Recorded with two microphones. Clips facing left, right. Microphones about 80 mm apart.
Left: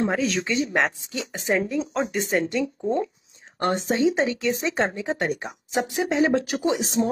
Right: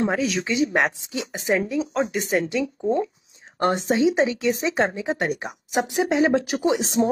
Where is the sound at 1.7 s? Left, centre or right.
Centre.